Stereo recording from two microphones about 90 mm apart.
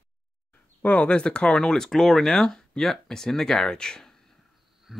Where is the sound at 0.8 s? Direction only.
15° left (ahead or behind).